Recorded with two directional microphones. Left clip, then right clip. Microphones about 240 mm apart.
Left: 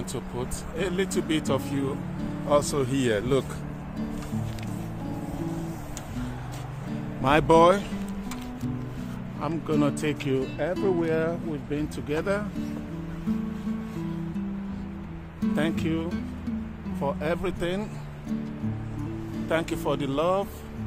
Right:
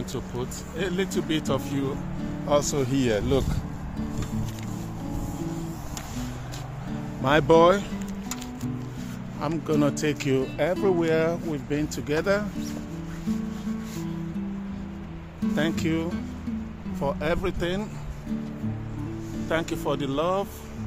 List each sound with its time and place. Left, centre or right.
0.1 s speech: centre
7.2 s speech: centre
9.4 s speech: centre
15.4 s speech: centre
19.5 s speech: centre